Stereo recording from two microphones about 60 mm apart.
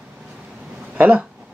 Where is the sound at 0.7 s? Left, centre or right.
Right.